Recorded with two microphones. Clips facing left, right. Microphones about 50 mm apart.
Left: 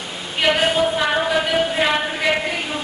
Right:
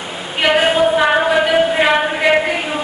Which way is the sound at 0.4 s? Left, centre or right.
Centre.